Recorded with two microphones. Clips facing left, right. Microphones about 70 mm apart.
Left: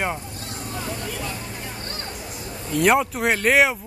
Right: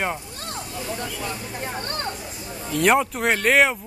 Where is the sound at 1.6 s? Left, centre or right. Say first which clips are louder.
Right 4 dB; right.